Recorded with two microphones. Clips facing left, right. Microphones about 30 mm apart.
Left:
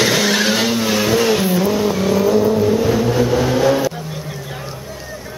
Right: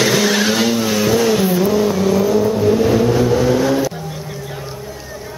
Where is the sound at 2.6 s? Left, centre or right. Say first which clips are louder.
Right 2 dB; centre.